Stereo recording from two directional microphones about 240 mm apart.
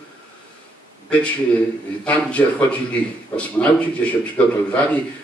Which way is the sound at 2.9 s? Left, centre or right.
Centre.